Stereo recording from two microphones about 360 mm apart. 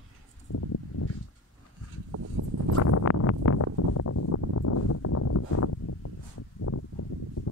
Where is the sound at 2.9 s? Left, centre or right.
Left.